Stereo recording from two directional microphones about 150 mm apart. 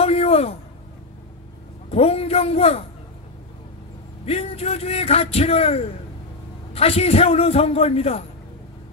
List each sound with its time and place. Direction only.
0.0 s a sound: 40° left (ahead or behind)
1.9 s a man's voice: 40° left (ahead or behind)
4.3 s speech: 40° left (ahead or behind)